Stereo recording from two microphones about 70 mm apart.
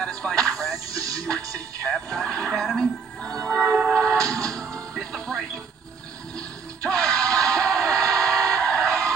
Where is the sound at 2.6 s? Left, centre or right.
Centre.